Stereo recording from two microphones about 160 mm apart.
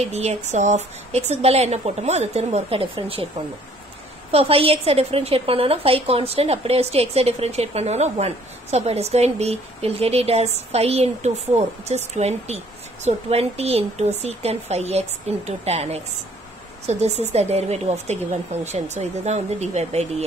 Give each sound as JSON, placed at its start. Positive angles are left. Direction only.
{"t": 0.1, "sound": "a woman's voice", "side_deg": -45}
{"t": 4.3, "sound": "a woman's voice", "side_deg": -35}